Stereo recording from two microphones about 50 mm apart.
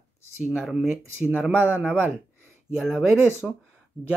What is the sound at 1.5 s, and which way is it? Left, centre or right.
Speech, right.